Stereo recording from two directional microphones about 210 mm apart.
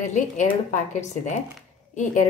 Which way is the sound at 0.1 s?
35° left (ahead or behind).